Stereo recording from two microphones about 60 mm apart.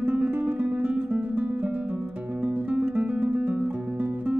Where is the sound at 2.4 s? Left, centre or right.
Right.